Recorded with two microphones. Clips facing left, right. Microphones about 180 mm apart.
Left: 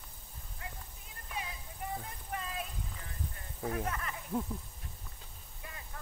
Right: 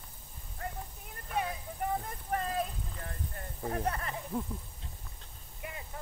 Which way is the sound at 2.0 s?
45° right (ahead or behind).